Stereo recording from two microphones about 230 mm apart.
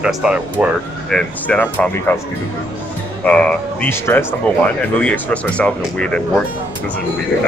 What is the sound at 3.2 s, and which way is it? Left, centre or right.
Speech, centre.